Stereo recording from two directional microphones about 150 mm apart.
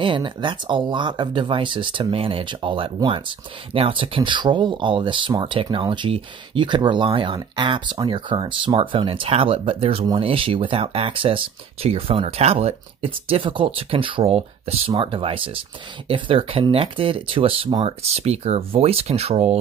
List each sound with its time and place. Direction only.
0.0 s speech: 30° right (ahead or behind)